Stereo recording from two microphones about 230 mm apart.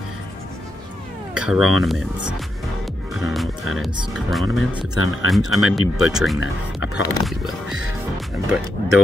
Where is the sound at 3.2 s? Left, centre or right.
Centre.